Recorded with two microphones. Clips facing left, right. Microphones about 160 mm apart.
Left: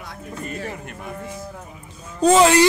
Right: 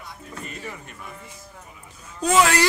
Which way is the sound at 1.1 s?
90° left.